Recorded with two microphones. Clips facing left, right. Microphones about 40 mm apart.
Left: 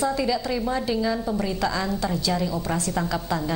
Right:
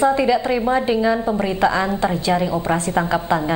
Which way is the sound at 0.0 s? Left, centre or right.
Right.